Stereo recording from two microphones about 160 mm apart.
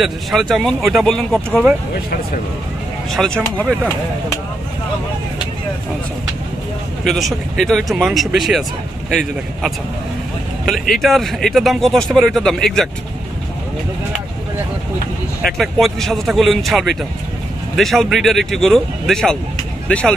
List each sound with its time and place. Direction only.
0.0 s speech: centre (ahead or behind)
3.1 s speech: centre (ahead or behind)
7.1 s speech: centre (ahead or behind)
15.4 s speech: centre (ahead or behind)